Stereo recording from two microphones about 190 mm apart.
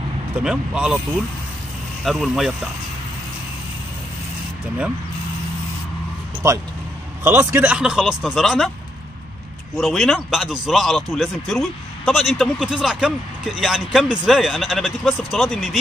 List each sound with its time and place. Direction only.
0.4 s speech: 5° right (ahead or behind)
2.0 s speech: centre (ahead or behind)
6.4 s speech: 15° right (ahead or behind); by 8.6 s centre (ahead or behind)
9.8 s speech: centre (ahead or behind)